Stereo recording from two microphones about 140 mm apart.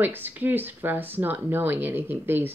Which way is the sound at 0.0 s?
15° right (ahead or behind).